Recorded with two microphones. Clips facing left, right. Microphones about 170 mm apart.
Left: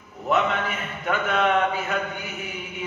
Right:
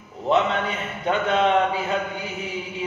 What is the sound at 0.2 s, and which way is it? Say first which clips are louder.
A man's voice: right 2 dB; 25° right (ahead or behind).